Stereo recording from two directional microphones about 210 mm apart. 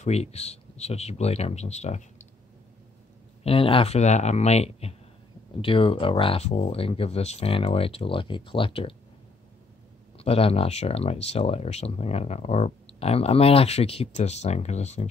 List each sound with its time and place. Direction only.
0.0 s speech: 30° left (ahead or behind)
3.4 s speech: 25° left (ahead or behind)
10.1 s speech: 30° left (ahead or behind)